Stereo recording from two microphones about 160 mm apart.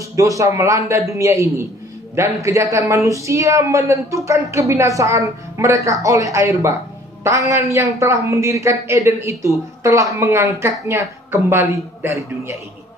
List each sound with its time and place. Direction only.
0.1 s a man's voice: 20° right (ahead or behind)